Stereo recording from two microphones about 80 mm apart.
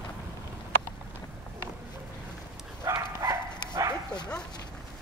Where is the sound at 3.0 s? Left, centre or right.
Right.